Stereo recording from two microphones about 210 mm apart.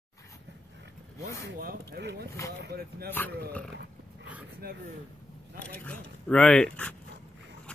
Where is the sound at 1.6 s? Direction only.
45° right (ahead or behind).